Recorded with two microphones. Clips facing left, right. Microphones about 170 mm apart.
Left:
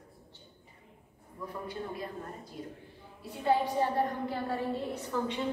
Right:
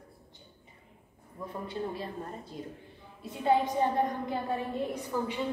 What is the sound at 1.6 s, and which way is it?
A woman's voice, 30° right (ahead or behind).